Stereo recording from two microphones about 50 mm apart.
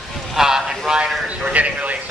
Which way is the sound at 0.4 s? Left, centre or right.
Centre.